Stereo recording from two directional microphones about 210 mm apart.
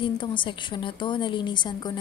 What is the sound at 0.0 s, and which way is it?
A woman's voice, 25° left (ahead or behind).